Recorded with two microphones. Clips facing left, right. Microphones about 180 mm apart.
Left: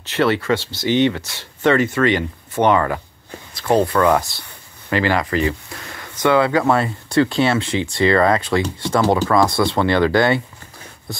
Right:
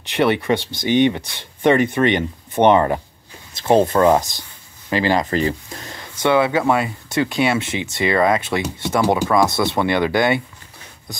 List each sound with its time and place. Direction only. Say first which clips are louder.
0.1 s speech: even; 15° right (ahead or behind)
5.3 s speech: even; 30° right (ahead or behind)